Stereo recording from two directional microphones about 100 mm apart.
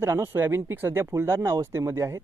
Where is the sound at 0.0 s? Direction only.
25° right (ahead or behind).